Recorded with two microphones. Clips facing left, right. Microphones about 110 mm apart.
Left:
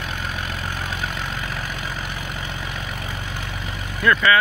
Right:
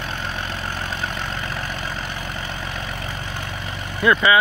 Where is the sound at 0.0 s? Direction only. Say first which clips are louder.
Right 1 dB; 5° left (ahead or behind).